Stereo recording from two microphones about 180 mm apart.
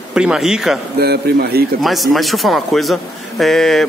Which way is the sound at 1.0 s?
60° right (ahead or behind).